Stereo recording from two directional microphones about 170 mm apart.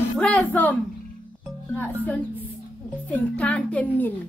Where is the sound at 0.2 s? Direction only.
5° left (ahead or behind).